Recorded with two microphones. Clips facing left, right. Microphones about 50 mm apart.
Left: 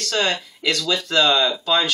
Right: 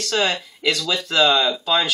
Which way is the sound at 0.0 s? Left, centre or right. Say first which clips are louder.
Right 1 dB; centre.